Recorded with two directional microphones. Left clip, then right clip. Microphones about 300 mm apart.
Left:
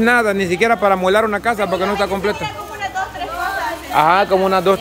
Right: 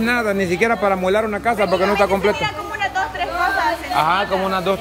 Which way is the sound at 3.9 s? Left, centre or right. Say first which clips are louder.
Left 7 dB; centre.